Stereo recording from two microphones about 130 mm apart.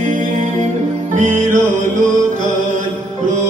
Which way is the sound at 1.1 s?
80° right.